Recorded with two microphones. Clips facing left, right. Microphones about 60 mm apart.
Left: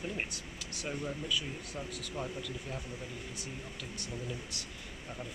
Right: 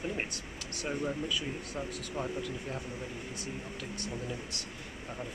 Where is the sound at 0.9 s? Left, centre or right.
Centre.